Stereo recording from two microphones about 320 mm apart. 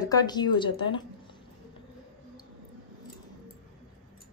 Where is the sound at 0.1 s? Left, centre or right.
Centre.